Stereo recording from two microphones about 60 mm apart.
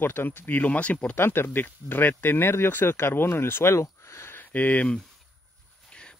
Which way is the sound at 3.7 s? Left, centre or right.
Left.